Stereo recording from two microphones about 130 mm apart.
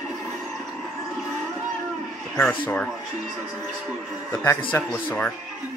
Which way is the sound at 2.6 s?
10° left (ahead or behind).